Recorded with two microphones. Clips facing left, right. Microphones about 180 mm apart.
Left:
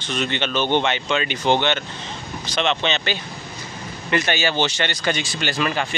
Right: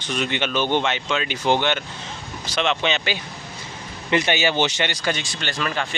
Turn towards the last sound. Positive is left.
turn(degrees=5)  # may be behind; listen again after turning